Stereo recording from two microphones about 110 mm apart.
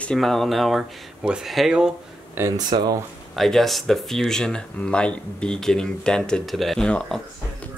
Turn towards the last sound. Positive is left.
turn(degrees=5)  # may be behind; listen again after turning